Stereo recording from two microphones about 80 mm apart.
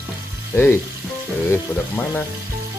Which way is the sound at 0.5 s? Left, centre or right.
Left.